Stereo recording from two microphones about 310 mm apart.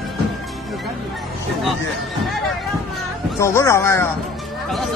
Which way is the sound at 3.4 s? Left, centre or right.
Centre.